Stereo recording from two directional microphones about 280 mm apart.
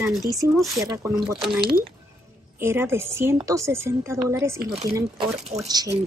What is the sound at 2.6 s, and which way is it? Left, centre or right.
A woman's voice, centre.